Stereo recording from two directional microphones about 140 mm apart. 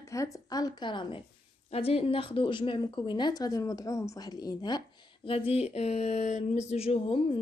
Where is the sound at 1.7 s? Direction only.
45° left (ahead or behind); by 4.8 s 30° left (ahead or behind).